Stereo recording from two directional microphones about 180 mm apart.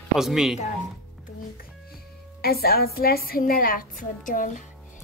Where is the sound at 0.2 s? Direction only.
Centre (ahead or behind).